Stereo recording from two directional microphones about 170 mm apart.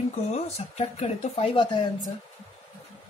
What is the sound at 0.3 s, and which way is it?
Speech, 40° left (ahead or behind).